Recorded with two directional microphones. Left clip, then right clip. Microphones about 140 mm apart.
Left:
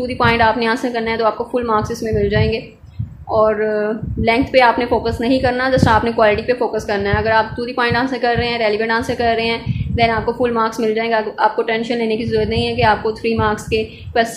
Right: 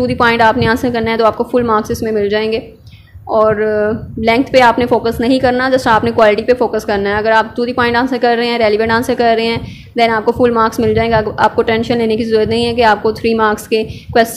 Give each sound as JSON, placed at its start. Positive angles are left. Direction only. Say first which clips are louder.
{"t": 0.0, "sound": "a woman's voice", "louder": "right 4 dB", "side_deg": -45}